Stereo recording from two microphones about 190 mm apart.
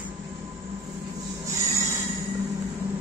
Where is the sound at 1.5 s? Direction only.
15° right (ahead or behind).